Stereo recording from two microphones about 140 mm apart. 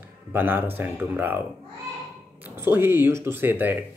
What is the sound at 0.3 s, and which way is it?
Speech, 15° right (ahead or behind).